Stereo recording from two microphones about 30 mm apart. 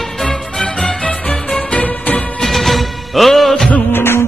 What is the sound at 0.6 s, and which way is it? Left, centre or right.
Music, left.